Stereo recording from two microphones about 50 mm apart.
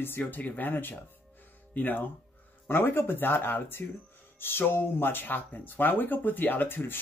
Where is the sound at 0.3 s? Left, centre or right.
Left.